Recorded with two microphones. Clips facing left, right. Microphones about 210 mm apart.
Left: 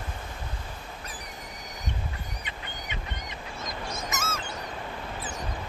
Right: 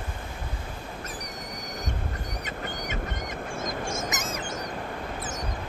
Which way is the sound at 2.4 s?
45° right (ahead or behind).